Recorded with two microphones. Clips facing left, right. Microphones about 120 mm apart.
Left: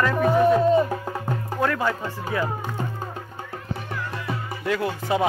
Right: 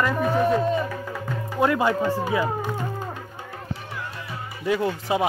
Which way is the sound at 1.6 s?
15° right (ahead or behind).